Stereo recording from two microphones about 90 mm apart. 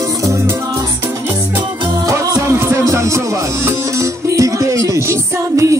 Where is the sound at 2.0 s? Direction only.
35° right (ahead or behind).